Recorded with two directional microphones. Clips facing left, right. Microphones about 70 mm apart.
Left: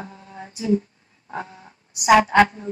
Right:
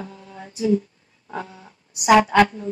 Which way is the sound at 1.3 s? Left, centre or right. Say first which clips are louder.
Even; left.